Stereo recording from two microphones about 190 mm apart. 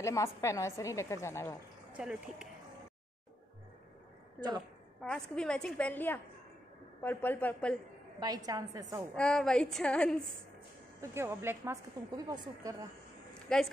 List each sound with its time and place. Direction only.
0.0 s a woman's voice: 15° left (ahead or behind)
2.0 s a woman's voice: 5° right (ahead or behind)
4.4 s a woman's voice: 5° left (ahead or behind)
8.2 s a woman's voice: 20° right (ahead or behind)
9.1 s a woman's voice: 5° left (ahead or behind)
11.0 s a woman's voice: 15° right (ahead or behind)
13.5 s a woman's voice: 5° left (ahead or behind)